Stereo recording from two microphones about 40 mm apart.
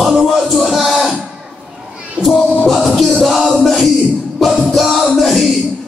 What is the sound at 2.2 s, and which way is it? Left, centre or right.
Music, right.